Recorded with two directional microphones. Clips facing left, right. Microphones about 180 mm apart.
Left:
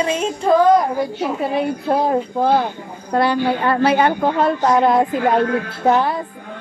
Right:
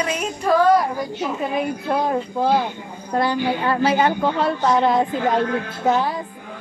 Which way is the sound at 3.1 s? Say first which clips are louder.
Left 3 dB; 65° left (ahead or behind).